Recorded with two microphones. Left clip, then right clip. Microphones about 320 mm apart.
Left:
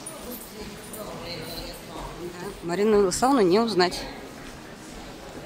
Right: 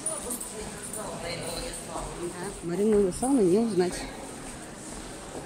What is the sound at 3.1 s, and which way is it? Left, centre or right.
Speech, left.